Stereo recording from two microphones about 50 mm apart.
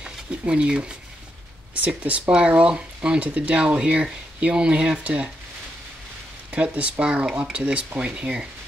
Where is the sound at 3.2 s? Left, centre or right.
Right.